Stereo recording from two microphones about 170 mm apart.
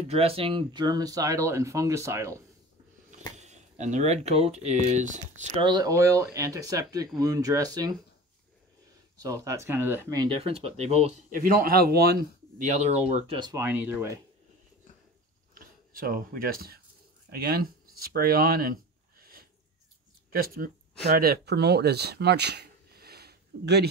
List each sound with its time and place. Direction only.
0.1 s speech: 35° right (ahead or behind); by 2.3 s 15° right (ahead or behind)
3.3 s speech: 45° right (ahead or behind)
5.6 s speech: 25° right (ahead or behind)
9.2 s speech: 20° right (ahead or behind); by 12.2 s 65° right (ahead or behind)
12.5 s speech: 45° right (ahead or behind)
13.4 s speech: 20° right (ahead or behind)
13.7 s speech: 10° right (ahead or behind)
15.5 s speech: 55° right (ahead or behind)
17.3 s a sound: 65° right (ahead or behind)
20.3 s speech: 60° right (ahead or behind); by 23.9 s 75° right (ahead or behind)